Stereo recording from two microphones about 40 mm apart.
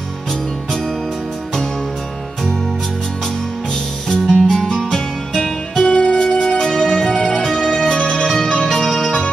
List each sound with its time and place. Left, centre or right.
4.3 s music: centre
7.3 s music: centre